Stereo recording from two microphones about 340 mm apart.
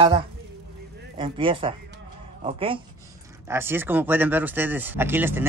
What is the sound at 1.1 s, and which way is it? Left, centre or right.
Speech, centre.